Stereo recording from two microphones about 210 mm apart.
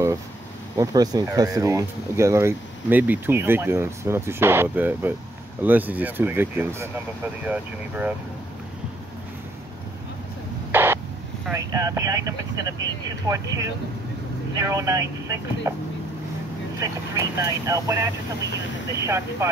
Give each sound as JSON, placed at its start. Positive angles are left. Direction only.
{"t": 0.7, "sound": "speech", "side_deg": -20}
{"t": 10.7, "sound": "a sound", "side_deg": -10}
{"t": 11.5, "sound": "speech", "side_deg": -15}
{"t": 16.8, "sound": "speech", "side_deg": -15}